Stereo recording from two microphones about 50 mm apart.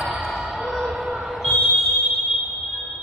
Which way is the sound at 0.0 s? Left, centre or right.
Centre.